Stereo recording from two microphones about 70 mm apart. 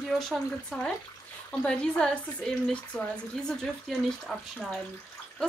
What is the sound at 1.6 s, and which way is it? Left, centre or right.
Speech, centre.